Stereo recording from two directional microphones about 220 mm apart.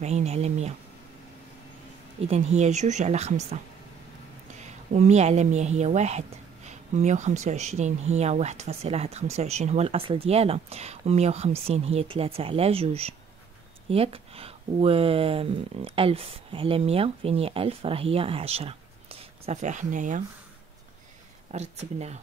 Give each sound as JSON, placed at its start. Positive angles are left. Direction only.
{"t": 0.0, "sound": "speech", "side_deg": -30}
{"t": 2.1, "sound": "speech", "side_deg": -30}
{"t": 4.6, "sound": "a woman's voice", "side_deg": -30}
{"t": 21.5, "sound": "speech", "side_deg": -30}